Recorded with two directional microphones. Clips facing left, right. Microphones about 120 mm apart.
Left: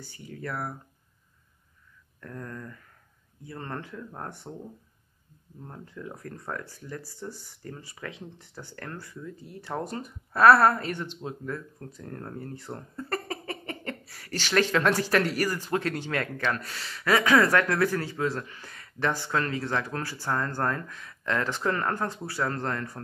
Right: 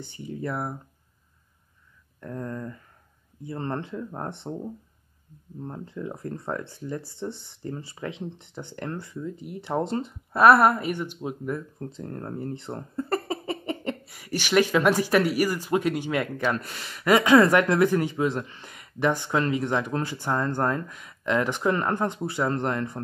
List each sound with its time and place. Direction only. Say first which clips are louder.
0.0 s speech: right 6 dB; 20° right (ahead or behind)
2.1 s speech: right 6 dB; 25° right (ahead or behind)
5.6 s speech: right 7 dB; 25° right (ahead or behind)